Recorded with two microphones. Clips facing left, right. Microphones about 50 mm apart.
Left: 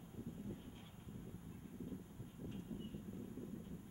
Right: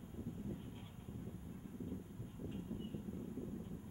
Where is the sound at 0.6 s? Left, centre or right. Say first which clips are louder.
Right 3 dB; centre.